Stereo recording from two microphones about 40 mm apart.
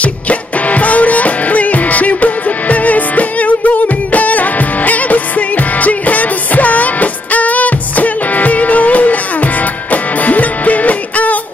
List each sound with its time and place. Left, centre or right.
0.0 s music: left